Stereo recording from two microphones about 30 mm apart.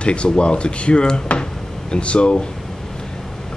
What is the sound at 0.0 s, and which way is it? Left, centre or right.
Speech, left.